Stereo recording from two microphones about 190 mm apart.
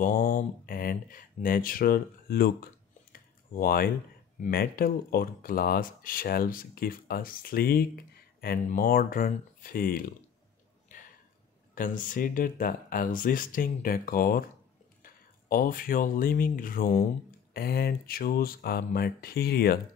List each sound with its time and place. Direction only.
0.0 s speech: 45° left (ahead or behind)
10.9 s a sound: 45° left (ahead or behind)
11.7 s speech: 45° left (ahead or behind)
15.4 s speech: 50° left (ahead or behind)